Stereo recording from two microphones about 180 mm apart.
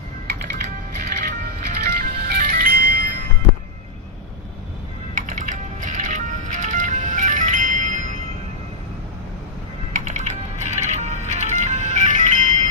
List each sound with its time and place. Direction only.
1.0 s music: 55° right (ahead or behind)
5.1 s music: 45° right (ahead or behind)
9.9 s music: 45° right (ahead or behind)